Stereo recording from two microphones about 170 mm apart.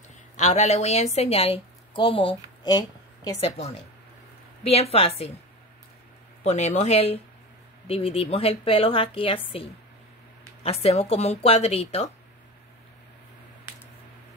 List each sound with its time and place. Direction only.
0.4 s a woman's voice: 40° left (ahead or behind)
6.4 s a woman's voice: 40° left (ahead or behind)